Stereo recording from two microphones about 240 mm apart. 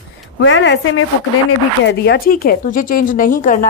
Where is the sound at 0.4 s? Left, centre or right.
Left.